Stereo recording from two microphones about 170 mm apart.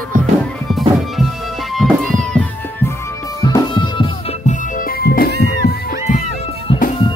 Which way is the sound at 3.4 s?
25° left (ahead or behind).